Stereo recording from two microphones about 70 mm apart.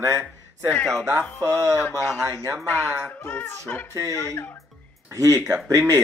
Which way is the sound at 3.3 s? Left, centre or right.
Left.